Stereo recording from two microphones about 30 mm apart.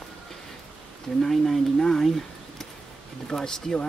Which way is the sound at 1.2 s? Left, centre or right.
Centre.